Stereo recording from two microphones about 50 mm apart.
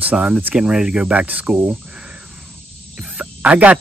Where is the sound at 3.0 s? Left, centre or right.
Right.